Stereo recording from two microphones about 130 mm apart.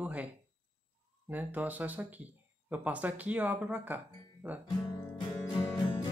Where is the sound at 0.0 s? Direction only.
10° right (ahead or behind).